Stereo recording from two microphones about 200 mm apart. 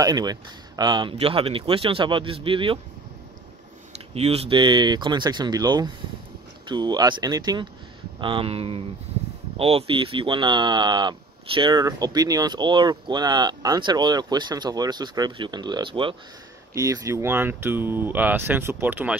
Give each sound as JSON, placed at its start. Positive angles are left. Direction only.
{"t": 0.0, "sound": "speech", "side_deg": -20}
{"t": 4.1, "sound": "speech", "side_deg": -30}